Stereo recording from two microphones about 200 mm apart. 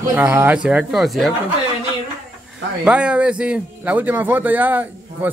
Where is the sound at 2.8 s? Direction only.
5° right (ahead or behind).